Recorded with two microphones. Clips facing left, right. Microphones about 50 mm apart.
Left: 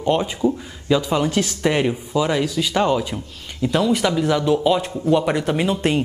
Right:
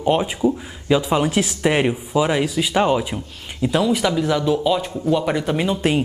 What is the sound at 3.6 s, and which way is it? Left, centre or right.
Speech, centre.